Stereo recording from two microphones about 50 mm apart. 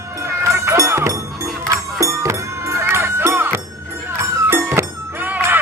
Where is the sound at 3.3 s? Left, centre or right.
Right.